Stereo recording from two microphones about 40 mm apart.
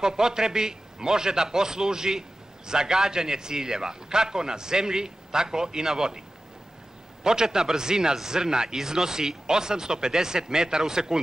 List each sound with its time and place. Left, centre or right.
0.0 s a man's voice: centre
7.2 s a man's voice: centre